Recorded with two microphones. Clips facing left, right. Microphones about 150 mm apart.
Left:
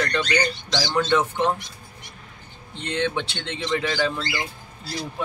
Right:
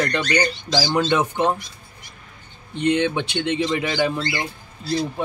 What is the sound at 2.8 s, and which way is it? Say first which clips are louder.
Speech: right 6 dB; 15° right (ahead or behind).